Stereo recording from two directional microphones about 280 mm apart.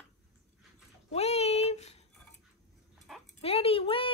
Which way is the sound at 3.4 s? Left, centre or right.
Left.